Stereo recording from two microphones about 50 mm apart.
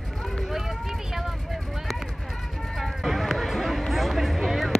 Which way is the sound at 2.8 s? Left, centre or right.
Centre.